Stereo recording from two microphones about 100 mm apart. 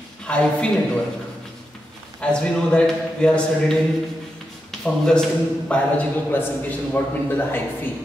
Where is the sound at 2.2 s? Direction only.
10° left (ahead or behind).